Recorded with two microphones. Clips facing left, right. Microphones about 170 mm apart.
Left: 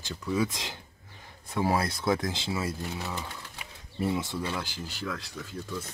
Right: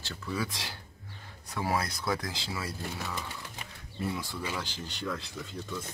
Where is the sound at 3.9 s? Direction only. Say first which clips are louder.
Left 5 dB; 25° left (ahead or behind).